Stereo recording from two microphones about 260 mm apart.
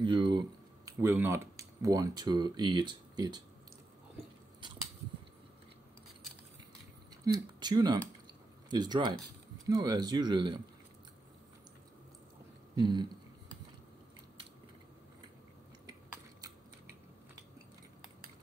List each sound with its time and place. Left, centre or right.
0.0 s speech: centre
7.2 s speech: centre
12.7 s speech: centre